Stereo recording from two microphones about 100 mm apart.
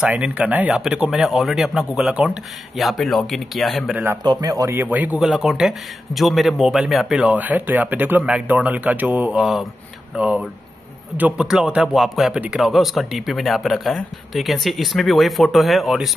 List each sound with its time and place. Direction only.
0.0 s speech: 10° right (ahead or behind)
3.9 s a man's voice: 20° right (ahead or behind)
4.2 s speech: 40° right (ahead or behind)
4.7 s speech: 15° right (ahead or behind)
5.2 s speech: 5° right (ahead or behind)
7.2 s speech: 15° right (ahead or behind)
9.4 s speech: centre (ahead or behind)
10.1 s speech: 10° right (ahead or behind)